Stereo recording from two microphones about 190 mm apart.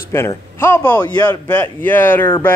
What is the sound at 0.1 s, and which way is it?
A man's voice, 15° left (ahead or behind).